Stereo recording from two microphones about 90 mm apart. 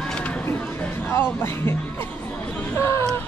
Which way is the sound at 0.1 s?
10° left (ahead or behind).